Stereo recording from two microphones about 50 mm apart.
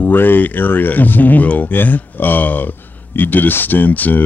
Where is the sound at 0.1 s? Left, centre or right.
Left.